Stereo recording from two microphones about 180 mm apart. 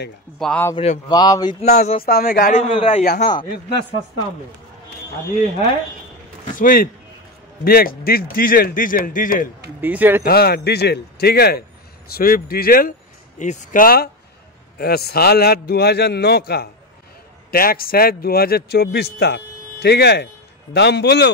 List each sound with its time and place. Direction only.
0.4 s speech: 10° left (ahead or behind)
1.0 s speech: 20° left (ahead or behind)
1.6 s speech: 40° left (ahead or behind)
2.0 s a man's voice: 60° left (ahead or behind)
2.5 s speech: 30° left (ahead or behind)
3.0 s a man's voice: 45° left (ahead or behind)
6.6 s a man's voice: 50° left (ahead or behind)
9.8 s speech: 10° right (ahead or behind)
10.2 s a man's voice: 60° left (ahead or behind)
13.4 s a man's voice: 40° left (ahead or behind); by 21.3 s 65° left (ahead or behind)